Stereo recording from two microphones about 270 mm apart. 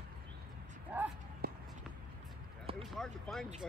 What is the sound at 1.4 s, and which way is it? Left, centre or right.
Run, right.